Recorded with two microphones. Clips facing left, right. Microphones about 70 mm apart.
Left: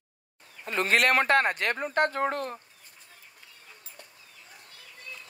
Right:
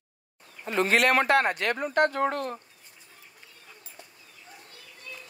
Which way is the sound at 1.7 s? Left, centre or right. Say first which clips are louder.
Right 2 dB; left.